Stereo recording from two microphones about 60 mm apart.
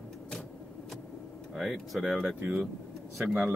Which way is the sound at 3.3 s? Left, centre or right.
Right.